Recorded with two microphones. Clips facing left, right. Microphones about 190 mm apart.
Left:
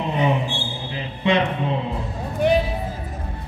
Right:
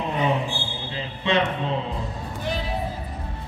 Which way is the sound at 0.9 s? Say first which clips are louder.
Left 3 dB; 15° left (ahead or behind).